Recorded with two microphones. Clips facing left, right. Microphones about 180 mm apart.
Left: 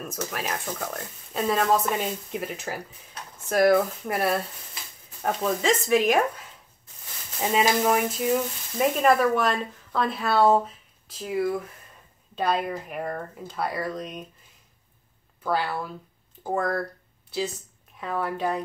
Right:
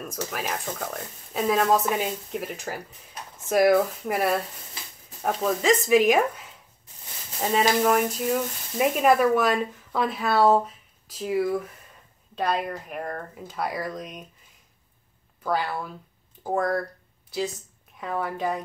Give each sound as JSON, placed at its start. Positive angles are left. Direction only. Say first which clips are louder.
{"t": 0.0, "sound": "speech", "louder": "even", "side_deg": 0}
{"t": 15.4, "sound": "speech", "louder": "even", "side_deg": 0}
{"t": 17.9, "sound": "speech", "louder": "even", "side_deg": 0}